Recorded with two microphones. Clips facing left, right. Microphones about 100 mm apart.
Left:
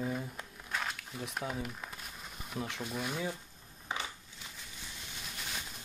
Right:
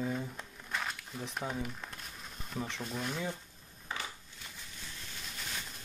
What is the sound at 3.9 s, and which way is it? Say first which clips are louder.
Crushing: left 2 dB; 20° left (ahead or behind).